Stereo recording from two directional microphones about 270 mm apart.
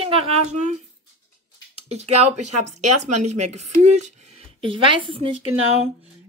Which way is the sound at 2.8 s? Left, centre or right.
Right.